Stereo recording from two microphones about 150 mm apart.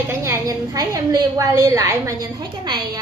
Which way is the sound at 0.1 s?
15° right (ahead or behind).